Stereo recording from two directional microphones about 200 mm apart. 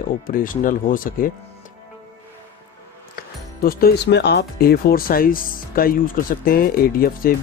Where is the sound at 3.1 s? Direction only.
45° left (ahead or behind).